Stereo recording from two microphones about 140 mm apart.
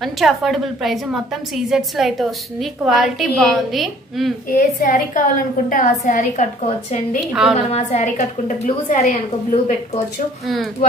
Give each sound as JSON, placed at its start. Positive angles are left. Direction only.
{"t": 0.0, "sound": "a woman's voice", "side_deg": 0}
{"t": 4.5, "sound": "a woman's voice", "side_deg": 75}
{"t": 10.4, "sound": "a woman's voice", "side_deg": 0}